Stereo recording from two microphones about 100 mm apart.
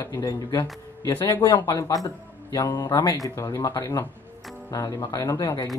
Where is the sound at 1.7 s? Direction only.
35° left (ahead or behind).